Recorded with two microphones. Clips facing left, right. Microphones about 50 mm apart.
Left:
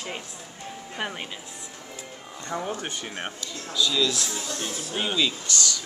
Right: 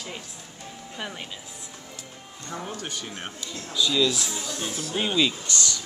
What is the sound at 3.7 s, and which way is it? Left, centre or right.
Speech, centre.